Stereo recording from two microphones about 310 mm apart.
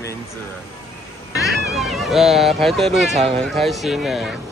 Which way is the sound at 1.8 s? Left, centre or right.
Centre.